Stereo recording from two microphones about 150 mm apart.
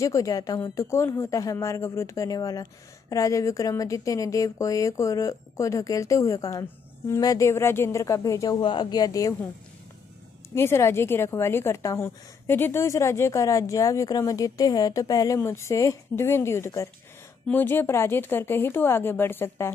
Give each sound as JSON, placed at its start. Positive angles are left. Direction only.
{"t": 0.0, "sound": "a woman's voice", "side_deg": 20}
{"t": 10.5, "sound": "a woman's voice", "side_deg": 15}